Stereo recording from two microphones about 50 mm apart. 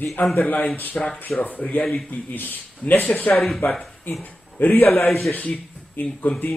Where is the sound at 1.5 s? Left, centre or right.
Left.